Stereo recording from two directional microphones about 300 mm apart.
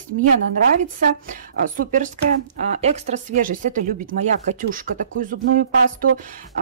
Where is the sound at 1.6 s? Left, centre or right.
Right.